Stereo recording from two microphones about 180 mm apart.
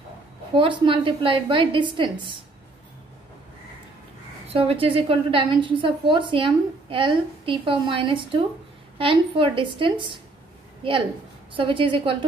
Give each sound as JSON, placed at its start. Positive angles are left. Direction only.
{"t": 0.6, "sound": "a woman's voice", "side_deg": -30}
{"t": 4.5, "sound": "a woman's voice", "side_deg": -35}